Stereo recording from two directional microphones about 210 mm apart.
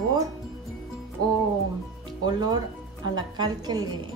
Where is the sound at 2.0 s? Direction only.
20° right (ahead or behind).